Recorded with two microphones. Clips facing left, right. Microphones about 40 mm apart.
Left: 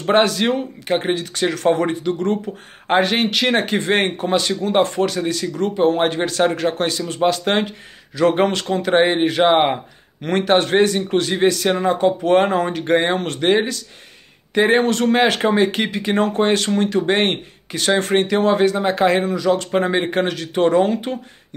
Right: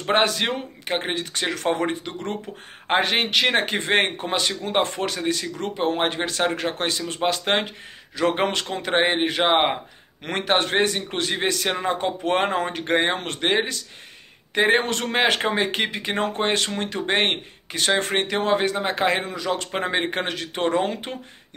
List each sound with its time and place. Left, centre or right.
0.1 s speech: right
5.9 s speech: centre